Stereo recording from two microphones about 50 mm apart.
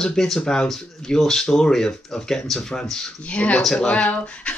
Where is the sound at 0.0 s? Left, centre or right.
Centre.